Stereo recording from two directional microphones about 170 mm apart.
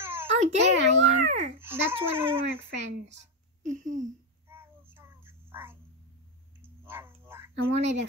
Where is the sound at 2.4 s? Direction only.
90° right.